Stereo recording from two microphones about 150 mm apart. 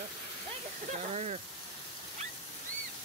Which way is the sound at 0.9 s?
50° right (ahead or behind).